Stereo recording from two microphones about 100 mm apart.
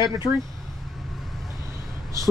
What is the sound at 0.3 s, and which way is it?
Speech, 45° left (ahead or behind).